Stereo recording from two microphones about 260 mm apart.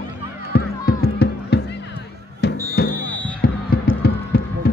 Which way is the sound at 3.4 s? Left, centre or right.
Left.